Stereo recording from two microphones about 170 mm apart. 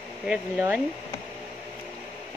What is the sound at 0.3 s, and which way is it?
Speech, 10° right (ahead or behind).